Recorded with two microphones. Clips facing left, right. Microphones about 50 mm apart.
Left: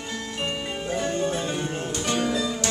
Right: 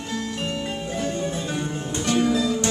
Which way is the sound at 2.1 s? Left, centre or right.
Centre.